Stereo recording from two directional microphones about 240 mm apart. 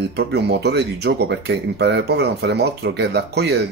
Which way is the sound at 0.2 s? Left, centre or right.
Right.